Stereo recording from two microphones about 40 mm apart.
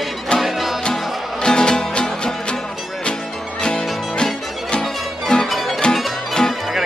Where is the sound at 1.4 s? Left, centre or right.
Centre.